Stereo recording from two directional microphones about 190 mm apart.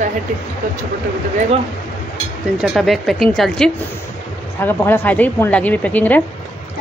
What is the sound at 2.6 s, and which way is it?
A woman's voice, centre (ahead or behind).